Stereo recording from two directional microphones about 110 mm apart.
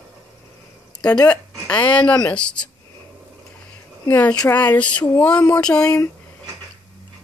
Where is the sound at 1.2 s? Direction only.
10° left (ahead or behind).